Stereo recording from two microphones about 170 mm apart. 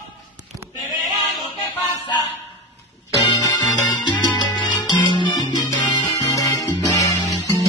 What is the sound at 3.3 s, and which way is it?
Salsa music, 25° left (ahead or behind).